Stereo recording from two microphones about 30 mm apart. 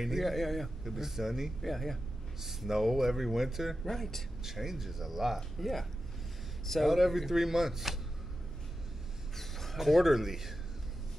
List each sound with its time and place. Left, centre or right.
0.0 s speech: centre
0.3 s speech: centre
0.8 s speech: centre
1.6 s speech: centre
2.4 s speech: centre
3.8 s speech: centre
4.4 s speech: centre
6.9 s speech: centre
9.3 s a sound: centre
9.8 s speech: centre